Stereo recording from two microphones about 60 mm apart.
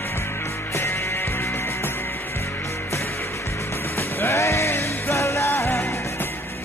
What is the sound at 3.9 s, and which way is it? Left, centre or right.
Music, left.